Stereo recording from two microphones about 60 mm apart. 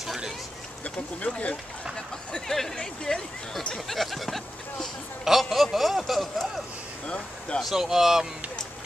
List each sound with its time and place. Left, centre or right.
0.0 s a sound: centre
1.2 s speech: left
2.0 s speech: centre
7.1 s speech: centre
7.6 s speech: centre